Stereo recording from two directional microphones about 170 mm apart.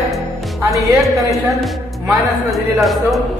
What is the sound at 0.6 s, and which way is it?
Speech, 15° right (ahead or behind).